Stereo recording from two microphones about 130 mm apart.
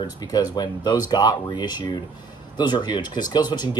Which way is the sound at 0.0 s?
30° left (ahead or behind).